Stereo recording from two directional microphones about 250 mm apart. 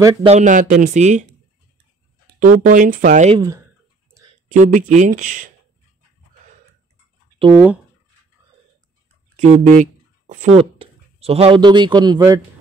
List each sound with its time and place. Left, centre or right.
0.0 s speech: centre
2.4 s speech: right
4.6 s speech: right
7.5 s speech: centre
9.4 s speech: right